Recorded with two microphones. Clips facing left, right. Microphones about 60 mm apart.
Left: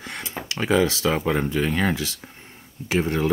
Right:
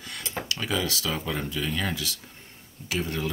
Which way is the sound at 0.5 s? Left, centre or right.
Left.